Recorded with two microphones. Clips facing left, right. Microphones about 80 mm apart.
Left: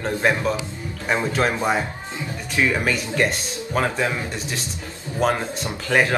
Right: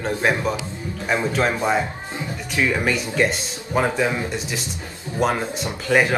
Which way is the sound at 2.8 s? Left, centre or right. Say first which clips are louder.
Right 1 dB; centre.